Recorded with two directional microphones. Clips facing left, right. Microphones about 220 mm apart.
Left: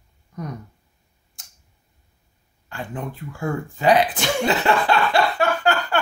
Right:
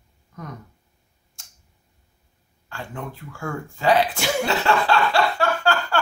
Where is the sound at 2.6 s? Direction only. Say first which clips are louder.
Left 3 dB; 20° left (ahead or behind).